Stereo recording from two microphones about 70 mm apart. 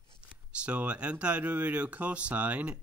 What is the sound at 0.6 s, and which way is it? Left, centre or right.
Speech, centre.